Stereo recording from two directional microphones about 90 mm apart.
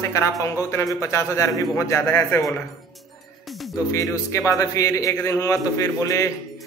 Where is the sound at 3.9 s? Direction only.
35° left (ahead or behind).